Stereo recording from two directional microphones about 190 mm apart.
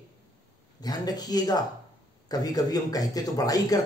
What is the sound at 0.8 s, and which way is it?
Speech, 20° left (ahead or behind).